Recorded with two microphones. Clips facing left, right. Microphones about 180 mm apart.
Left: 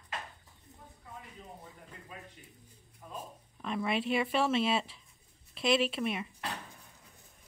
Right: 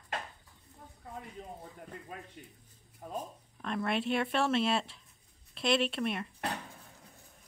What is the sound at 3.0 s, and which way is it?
Speech, 40° right (ahead or behind).